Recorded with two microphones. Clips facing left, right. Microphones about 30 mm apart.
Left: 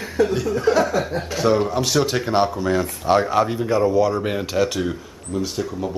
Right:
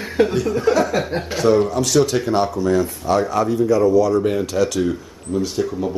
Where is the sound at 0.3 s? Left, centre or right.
Centre; by 4.7 s left.